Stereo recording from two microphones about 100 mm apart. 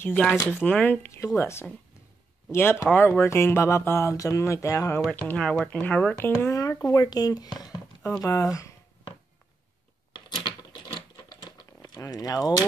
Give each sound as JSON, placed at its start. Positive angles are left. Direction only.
{"t": 0.3, "sound": "speech", "side_deg": 20}
{"t": 1.0, "sound": "speech", "side_deg": 30}
{"t": 5.1, "sound": "speech", "side_deg": 15}
{"t": 6.5, "sound": "speech", "side_deg": 35}
{"t": 7.5, "sound": "a sound", "side_deg": 40}
{"t": 8.2, "sound": "speech", "side_deg": 30}
{"t": 10.1, "sound": "a sound", "side_deg": 45}